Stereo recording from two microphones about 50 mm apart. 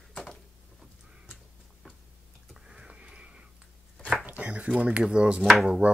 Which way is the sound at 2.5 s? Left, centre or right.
Centre.